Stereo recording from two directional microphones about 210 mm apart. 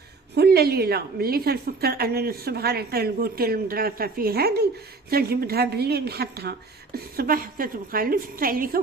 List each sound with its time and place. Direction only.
0.3 s a woman's voice: 50° right (ahead or behind)